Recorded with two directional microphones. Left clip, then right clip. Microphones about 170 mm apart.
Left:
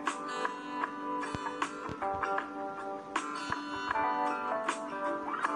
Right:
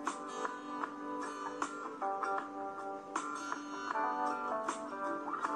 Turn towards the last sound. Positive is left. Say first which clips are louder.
# left 4 dB
turn(degrees=-25)  # may be behind; listen again after turning